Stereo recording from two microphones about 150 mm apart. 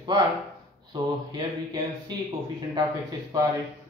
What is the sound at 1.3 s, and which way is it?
Speech, 30° right (ahead or behind).